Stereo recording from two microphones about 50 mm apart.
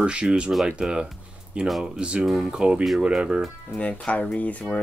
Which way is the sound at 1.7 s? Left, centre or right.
Centre.